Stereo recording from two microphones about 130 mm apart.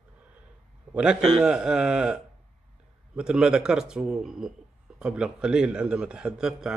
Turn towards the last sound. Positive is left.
turn(degrees=-5)  # may be behind; listen again after turning